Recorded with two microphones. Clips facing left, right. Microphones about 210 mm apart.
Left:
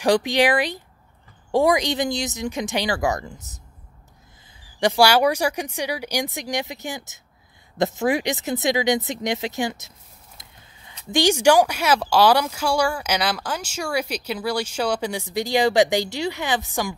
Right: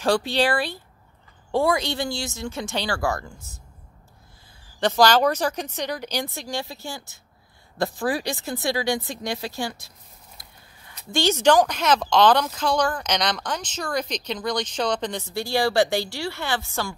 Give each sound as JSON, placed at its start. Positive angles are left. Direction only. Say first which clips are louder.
{"t": 0.0, "sound": "speech", "louder": "left 3 dB", "side_deg": 15}
{"t": 4.7, "sound": "speech", "louder": "left 1 dB", "side_deg": 10}